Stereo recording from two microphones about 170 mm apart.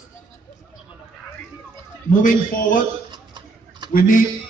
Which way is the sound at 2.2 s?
55° left (ahead or behind).